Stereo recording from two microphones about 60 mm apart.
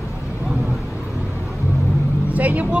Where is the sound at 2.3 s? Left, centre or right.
Right.